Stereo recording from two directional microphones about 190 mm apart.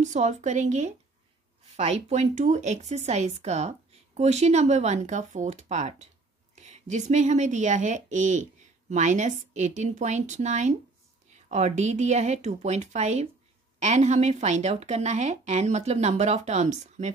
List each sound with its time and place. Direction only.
0.0 s speech: 40° right (ahead or behind)